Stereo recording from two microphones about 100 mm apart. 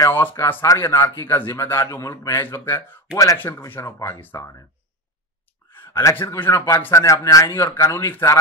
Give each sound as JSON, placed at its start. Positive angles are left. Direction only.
{"t": 0.1, "sound": "a man's voice", "side_deg": 20}
{"t": 5.8, "sound": "a sound", "side_deg": 25}
{"t": 6.3, "sound": "a man's voice", "side_deg": 25}
{"t": 7.5, "sound": "a man's voice", "side_deg": 20}